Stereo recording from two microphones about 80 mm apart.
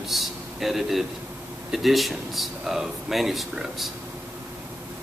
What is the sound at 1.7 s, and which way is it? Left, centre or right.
Speech, centre.